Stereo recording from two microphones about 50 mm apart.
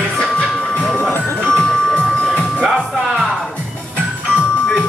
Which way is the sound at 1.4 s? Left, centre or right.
Centre.